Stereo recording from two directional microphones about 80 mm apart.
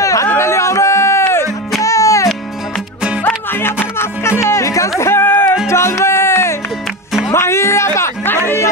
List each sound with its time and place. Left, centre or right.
0.0 s a sound: left
1.8 s music: left
3.3 s music: left
5.1 s music: left